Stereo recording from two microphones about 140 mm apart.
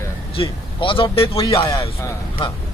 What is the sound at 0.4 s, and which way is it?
Speech, 40° left (ahead or behind).